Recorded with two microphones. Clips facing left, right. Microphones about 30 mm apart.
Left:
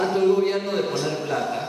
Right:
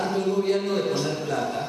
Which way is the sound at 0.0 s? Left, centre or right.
Centre.